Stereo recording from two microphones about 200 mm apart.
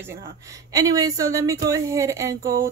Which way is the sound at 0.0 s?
15° right (ahead or behind).